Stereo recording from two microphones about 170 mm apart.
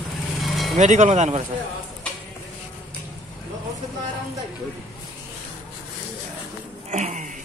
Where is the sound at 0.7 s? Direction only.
45° right (ahead or behind).